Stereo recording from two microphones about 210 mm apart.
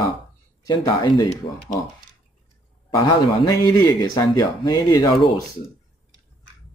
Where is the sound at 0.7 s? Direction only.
20° left (ahead or behind).